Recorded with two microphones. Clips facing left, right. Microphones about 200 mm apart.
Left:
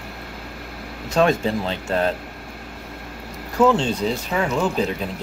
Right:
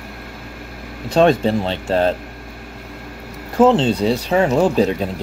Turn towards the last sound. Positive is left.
turn(degrees=-40)  # may be behind; listen again after turning